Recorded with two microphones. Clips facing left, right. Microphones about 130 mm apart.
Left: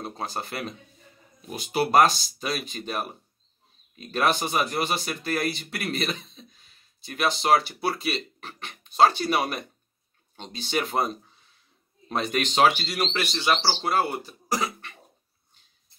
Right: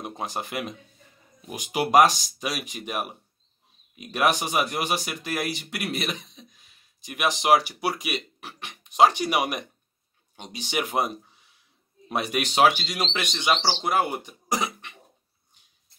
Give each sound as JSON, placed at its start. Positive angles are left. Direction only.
{"t": 0.0, "sound": "speech", "side_deg": -15}